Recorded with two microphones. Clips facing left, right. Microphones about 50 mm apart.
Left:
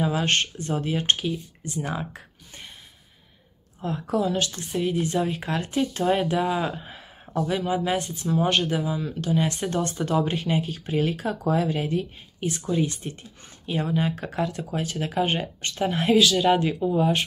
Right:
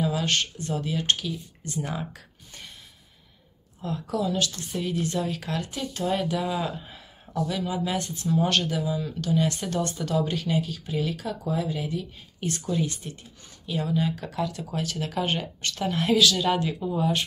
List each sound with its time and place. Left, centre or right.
0.0 s speech: left
1.6 s speech: centre
3.8 s speech: left
7.4 s speech: left
11.4 s speech: left
12.4 s speech: centre